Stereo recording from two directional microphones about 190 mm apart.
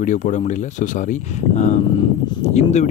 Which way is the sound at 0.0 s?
40° left (ahead or behind).